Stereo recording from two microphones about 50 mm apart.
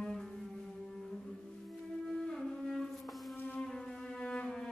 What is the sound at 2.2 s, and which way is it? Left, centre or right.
Music, centre.